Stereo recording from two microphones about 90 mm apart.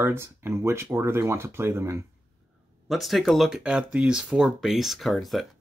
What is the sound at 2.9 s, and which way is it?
Speech, centre (ahead or behind).